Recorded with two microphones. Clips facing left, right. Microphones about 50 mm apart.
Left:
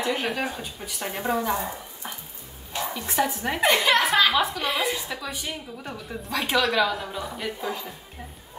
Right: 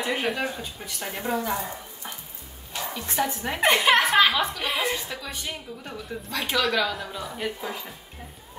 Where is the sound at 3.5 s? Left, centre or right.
Centre.